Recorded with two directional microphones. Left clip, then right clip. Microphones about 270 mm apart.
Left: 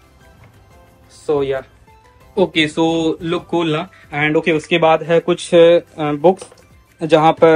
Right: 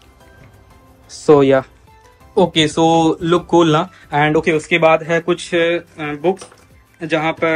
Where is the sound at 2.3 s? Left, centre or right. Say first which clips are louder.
Right 2 dB; centre.